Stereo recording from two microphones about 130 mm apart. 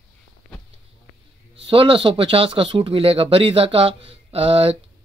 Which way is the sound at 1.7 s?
45° right (ahead or behind).